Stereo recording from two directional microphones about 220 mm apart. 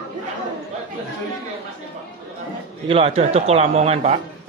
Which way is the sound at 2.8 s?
25° right (ahead or behind).